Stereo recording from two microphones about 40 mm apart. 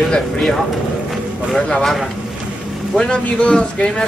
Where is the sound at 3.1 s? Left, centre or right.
Left.